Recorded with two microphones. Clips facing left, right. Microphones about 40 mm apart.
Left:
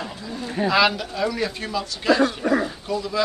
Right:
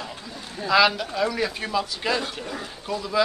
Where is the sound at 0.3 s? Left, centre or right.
Left.